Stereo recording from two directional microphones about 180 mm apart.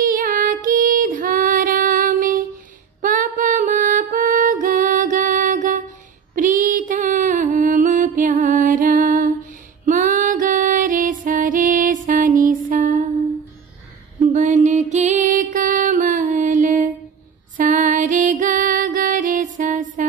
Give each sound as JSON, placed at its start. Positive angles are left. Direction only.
{"t": 0.0, "sound": "music", "side_deg": -50}
{"t": 14.3, "sound": "music", "side_deg": -45}